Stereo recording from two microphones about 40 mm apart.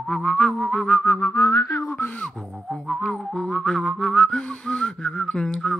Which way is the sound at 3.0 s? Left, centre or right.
Centre.